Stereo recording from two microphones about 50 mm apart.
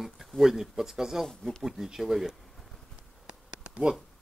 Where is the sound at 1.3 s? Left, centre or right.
Centre.